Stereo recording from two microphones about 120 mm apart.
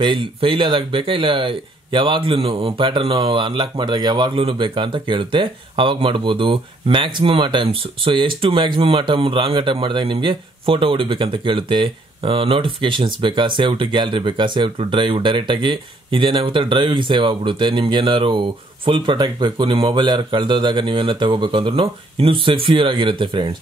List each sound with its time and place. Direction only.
0.0 s speech: 45° right (ahead or behind)